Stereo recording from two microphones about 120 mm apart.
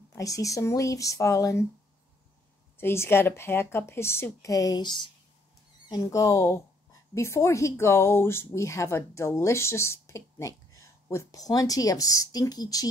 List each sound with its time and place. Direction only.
0.1 s speech: 30° left (ahead or behind)
2.8 s speech: 20° left (ahead or behind); by 5.1 s 40° left (ahead or behind)
5.9 s speech: 30° left (ahead or behind)